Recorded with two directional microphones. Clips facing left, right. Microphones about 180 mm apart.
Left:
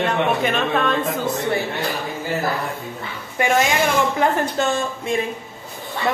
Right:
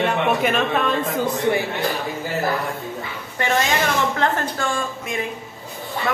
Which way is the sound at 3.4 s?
15° left (ahead or behind).